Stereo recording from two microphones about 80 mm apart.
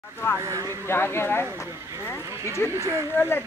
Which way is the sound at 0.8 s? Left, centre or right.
Left.